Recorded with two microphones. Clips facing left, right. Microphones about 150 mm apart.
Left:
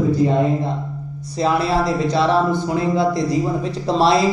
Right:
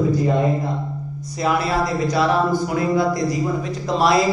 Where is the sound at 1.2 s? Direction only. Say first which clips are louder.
Left 2 dB; 30° left (ahead or behind).